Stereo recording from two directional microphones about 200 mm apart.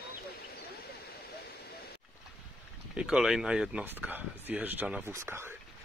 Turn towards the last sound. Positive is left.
turn(degrees=-10)  # may be behind; listen again after turning